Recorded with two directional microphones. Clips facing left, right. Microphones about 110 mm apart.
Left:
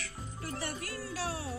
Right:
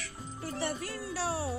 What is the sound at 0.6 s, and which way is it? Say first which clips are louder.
Music: right 6 dB; 30° right (ahead or behind).